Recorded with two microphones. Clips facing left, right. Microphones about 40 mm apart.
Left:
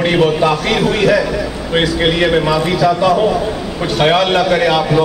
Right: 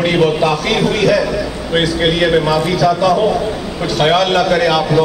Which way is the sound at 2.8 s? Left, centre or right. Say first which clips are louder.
Left 1 dB; left.